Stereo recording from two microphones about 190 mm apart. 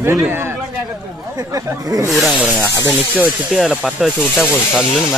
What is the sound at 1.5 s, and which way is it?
Speech, 20° right (ahead or behind).